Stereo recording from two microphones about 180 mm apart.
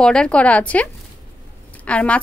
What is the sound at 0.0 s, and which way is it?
Speech, 5° left (ahead or behind).